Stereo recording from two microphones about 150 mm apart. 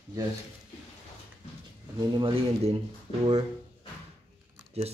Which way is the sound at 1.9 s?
30° right (ahead or behind).